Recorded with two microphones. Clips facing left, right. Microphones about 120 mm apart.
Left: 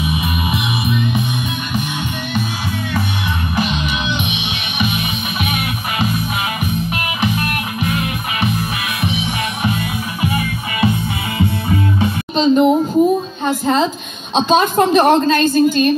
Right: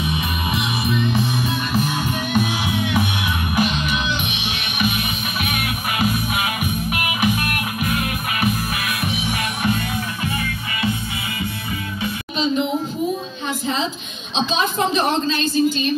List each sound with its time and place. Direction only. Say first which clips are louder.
0.8 s music: even; 30° right (ahead or behind)
3.5 s music: even; centre (ahead or behind)
5.4 s music: left 3 dB; centre (ahead or behind)
12.4 s a sound: left 9 dB; 45° left (ahead or behind)
13.5 s a woman's voice: left 8 dB; 45° left (ahead or behind)